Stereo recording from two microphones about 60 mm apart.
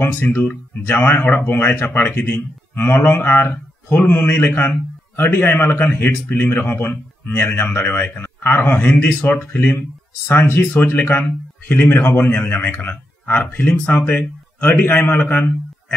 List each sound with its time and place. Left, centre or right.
0.0 s speech: left